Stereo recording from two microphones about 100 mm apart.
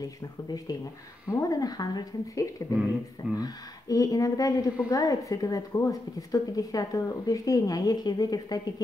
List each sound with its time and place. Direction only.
1.3 s a woman's voice: 40° left (ahead or behind)